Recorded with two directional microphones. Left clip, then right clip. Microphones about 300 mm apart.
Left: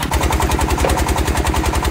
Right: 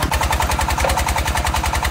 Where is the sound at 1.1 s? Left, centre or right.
Right.